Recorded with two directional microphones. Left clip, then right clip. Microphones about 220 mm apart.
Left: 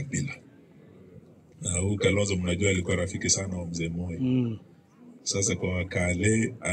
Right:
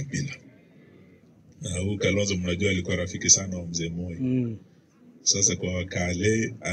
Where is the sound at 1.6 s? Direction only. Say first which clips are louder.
Left 1 dB; 10° left (ahead or behind).